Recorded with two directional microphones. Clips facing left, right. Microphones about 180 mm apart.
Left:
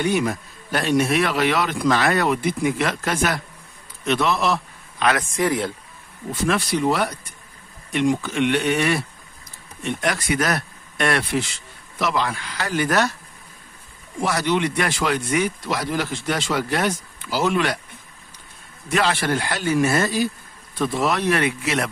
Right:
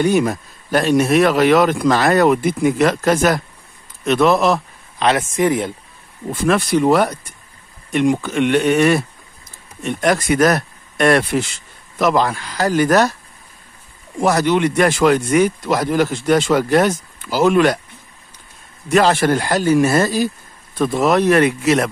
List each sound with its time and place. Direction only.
0.0 s speech: 45° right (ahead or behind)
4.9 s speech: 25° right (ahead or behind)
6.4 s speech: 55° right (ahead or behind)
14.2 s speech: 45° right (ahead or behind)
18.9 s speech: 45° right (ahead or behind)